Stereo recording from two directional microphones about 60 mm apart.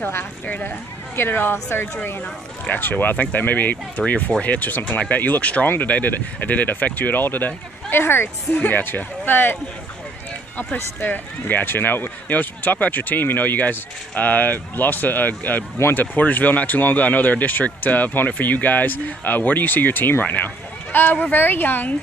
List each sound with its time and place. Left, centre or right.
0.0 s speech: left
10.6 s speech: left